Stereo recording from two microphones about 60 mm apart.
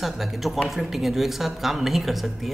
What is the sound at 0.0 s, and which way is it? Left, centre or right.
A man's voice, centre.